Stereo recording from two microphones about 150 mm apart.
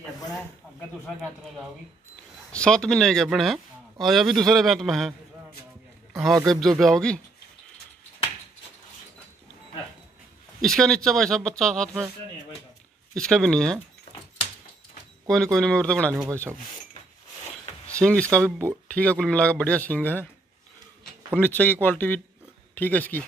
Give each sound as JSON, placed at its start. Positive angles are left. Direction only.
{"t": 2.5, "sound": "speech", "side_deg": 5}
{"t": 6.1, "sound": "a man's voice", "side_deg": 0}
{"t": 10.6, "sound": "speech", "side_deg": 0}
{"t": 13.1, "sound": "speech", "side_deg": 5}
{"t": 15.2, "sound": "speech", "side_deg": 5}
{"t": 18.0, "sound": "a man's voice", "side_deg": 10}
{"t": 18.4, "sound": "speech", "side_deg": -15}
{"t": 18.9, "sound": "a man's voice", "side_deg": 10}
{"t": 21.4, "sound": "a man's voice", "side_deg": 15}